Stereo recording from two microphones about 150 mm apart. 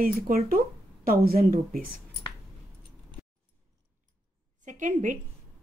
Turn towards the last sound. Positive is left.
turn(degrees=-60)  # may be behind; listen again after turning